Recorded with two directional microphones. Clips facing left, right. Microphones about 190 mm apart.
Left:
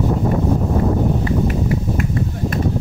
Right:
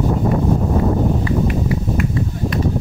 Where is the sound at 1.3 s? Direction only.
40° left (ahead or behind).